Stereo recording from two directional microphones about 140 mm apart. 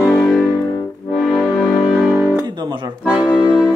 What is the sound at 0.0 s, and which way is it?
Music, 20° left (ahead or behind).